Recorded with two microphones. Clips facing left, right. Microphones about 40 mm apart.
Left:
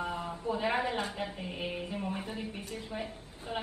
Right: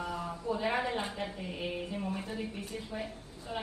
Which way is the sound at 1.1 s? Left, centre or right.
Centre.